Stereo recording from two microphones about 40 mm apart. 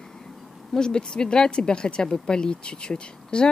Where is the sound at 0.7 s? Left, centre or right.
Centre.